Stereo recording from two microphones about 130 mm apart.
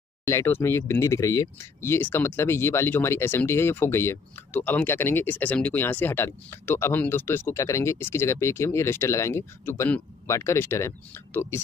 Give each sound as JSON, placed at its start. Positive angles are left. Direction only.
{"t": 0.2, "sound": "speech", "side_deg": 20}